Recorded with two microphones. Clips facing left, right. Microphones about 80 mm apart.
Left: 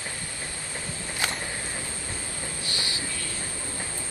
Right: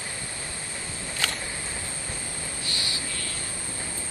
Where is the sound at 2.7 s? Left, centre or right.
Left.